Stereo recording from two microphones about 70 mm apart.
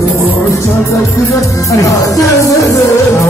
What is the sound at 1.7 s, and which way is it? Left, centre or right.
Music, left.